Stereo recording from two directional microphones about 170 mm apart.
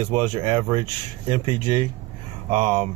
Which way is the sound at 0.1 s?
35° right (ahead or behind).